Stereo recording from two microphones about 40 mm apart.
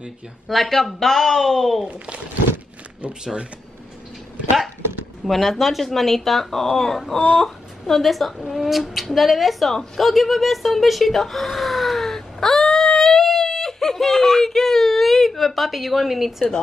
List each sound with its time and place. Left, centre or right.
0.5 s a woman's voice: centre
1.9 s speech: right
5.2 s a woman's voice: centre